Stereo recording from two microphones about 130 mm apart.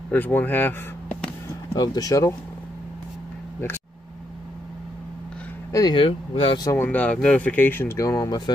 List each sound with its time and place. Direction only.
0.1 s speech: 15° left (ahead or behind)
1.7 s speech: 30° left (ahead or behind)
5.7 s speech: 25° left (ahead or behind)
5.9 s speech: 45° left (ahead or behind)
6.8 s speech: 10° left (ahead or behind); by 8.4 s 25° left (ahead or behind)